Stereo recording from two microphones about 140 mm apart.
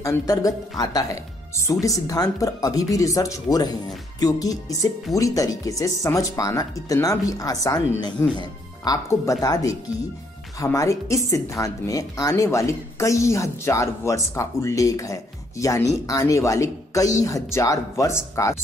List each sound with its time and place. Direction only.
0.0 s a woman's voice: 25° left (ahead or behind)